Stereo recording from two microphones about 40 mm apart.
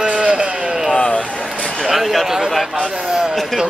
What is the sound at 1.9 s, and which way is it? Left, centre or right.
Speech, centre.